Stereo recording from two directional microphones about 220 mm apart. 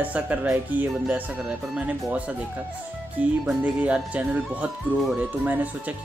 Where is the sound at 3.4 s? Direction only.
5° right (ahead or behind).